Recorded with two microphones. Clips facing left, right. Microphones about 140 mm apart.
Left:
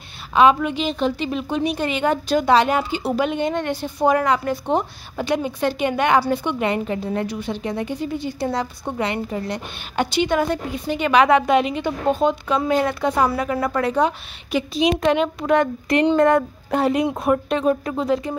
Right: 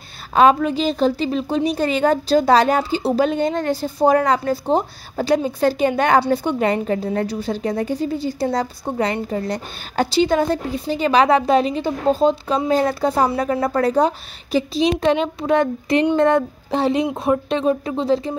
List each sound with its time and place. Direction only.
0.3 s a woman's voice: 40° right (ahead or behind)